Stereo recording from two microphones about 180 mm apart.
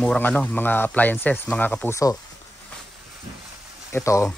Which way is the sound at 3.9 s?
15° left (ahead or behind).